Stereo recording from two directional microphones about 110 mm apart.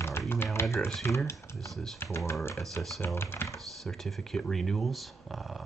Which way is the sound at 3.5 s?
Centre (ahead or behind).